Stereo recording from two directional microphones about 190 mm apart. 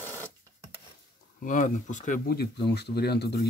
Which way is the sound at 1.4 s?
45° left (ahead or behind).